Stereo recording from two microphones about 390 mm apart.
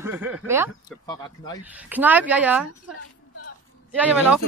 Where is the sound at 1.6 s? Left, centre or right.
Centre.